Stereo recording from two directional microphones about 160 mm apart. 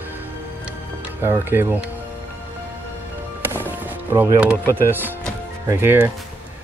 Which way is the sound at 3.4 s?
15° right (ahead or behind).